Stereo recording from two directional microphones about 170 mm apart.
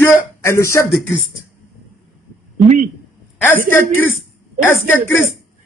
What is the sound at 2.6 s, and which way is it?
Speech, 45° right (ahead or behind).